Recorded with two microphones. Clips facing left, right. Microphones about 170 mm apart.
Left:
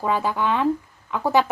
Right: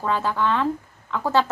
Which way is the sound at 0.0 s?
15° left (ahead or behind).